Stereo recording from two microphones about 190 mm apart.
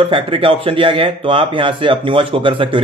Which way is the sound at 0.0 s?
25° right (ahead or behind).